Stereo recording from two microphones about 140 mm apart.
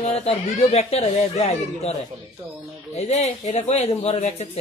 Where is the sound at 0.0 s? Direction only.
50° left (ahead or behind).